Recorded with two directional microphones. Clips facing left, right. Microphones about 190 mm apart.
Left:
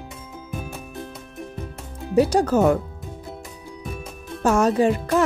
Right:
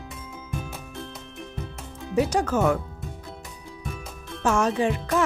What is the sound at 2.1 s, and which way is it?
Speech, 35° left (ahead or behind).